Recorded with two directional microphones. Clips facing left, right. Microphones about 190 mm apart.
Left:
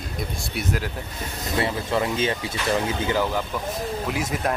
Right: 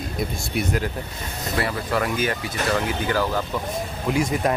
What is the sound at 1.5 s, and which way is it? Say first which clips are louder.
Speech: left 1 dB; 25° left (ahead or behind).